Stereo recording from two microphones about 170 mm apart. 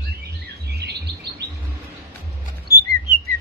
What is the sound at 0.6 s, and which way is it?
Chirp, 70° right (ahead or behind).